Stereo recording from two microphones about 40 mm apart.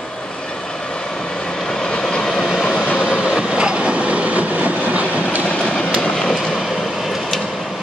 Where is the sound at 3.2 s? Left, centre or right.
Right.